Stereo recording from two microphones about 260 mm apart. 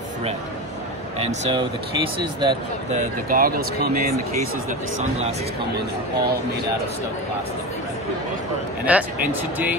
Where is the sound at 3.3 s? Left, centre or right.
Right.